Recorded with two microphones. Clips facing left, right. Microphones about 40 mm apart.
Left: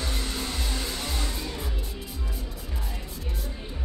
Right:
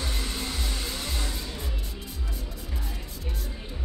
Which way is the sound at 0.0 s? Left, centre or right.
Centre.